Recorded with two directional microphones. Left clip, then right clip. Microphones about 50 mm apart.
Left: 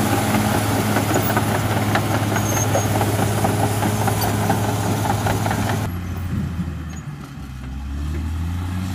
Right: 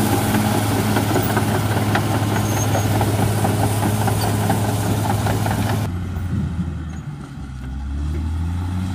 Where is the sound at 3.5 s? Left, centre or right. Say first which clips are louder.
Even; right.